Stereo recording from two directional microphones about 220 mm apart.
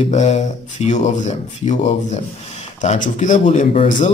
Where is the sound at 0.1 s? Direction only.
30° left (ahead or behind).